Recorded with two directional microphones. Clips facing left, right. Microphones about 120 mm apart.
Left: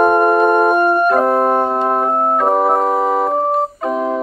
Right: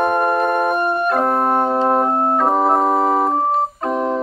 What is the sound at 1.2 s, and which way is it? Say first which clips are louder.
Organ: left 3 dB; centre (ahead or behind).